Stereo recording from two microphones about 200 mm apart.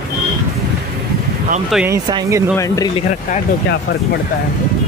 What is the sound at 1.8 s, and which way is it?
Speech, 15° right (ahead or behind).